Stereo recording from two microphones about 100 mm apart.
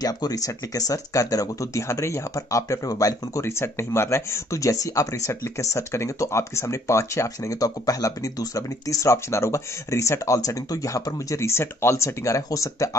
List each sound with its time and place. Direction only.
0.0 s speech: 35° left (ahead or behind)